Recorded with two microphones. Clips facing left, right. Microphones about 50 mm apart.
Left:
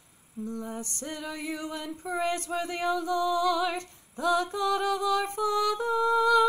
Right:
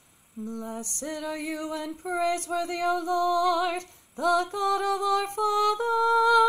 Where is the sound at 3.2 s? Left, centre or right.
Left.